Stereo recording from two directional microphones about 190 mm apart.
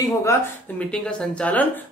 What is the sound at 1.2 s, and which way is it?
Speech, 5° left (ahead or behind).